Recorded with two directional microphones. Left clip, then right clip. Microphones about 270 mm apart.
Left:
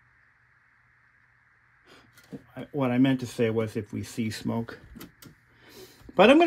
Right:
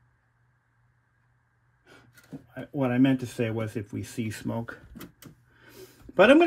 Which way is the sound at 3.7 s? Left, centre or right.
Centre.